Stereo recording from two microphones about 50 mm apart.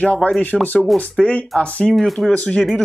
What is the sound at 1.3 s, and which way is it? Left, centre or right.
Speech, left.